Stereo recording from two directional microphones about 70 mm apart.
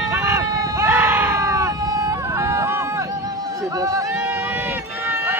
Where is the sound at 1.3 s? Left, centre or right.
Right.